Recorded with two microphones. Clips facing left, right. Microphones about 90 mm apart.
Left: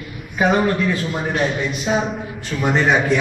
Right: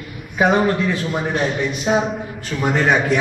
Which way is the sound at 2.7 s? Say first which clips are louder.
Even; 50° right (ahead or behind).